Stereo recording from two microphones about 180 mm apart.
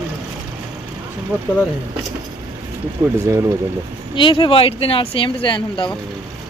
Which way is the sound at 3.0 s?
25° right (ahead or behind).